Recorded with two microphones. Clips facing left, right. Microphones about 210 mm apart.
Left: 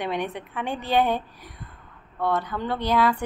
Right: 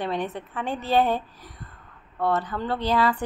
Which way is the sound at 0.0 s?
15° left (ahead or behind).